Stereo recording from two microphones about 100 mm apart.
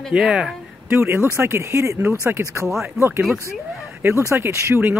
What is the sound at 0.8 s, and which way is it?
Speech, 25° right (ahead or behind).